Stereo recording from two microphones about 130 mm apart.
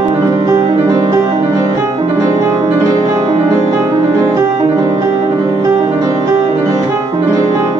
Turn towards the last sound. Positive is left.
turn(degrees=-25)  # may be behind; listen again after turning